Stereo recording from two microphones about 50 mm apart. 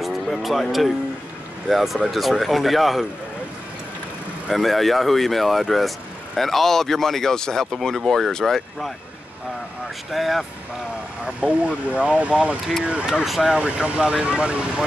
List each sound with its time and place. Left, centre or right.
0.0 s speech: centre
4.5 s speech: centre
10.1 s speech: centre
11.2 s speech: right
13.2 s speech: centre
13.6 s speech: right